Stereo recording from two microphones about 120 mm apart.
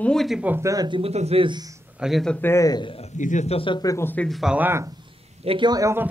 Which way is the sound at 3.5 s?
45° left (ahead or behind).